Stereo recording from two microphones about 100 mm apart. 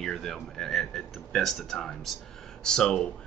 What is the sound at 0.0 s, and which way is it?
A man's voice, 5° left (ahead or behind).